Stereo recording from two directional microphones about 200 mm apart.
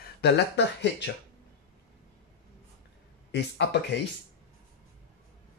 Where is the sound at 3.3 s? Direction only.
60° left (ahead or behind).